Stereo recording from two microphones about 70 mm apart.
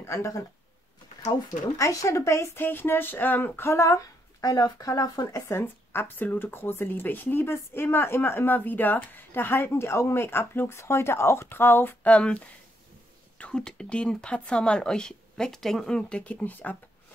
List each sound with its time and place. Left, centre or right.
0.0 s speech: left
3.7 s speech: left
5.6 s a woman's voice: left